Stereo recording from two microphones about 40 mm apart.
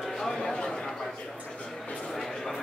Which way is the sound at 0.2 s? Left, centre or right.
Centre.